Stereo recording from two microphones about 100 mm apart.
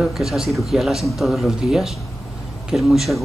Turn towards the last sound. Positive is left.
turn(degrees=0)  # may be behind; listen again after turning